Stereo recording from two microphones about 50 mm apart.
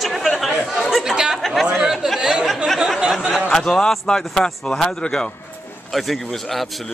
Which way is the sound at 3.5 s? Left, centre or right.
Centre.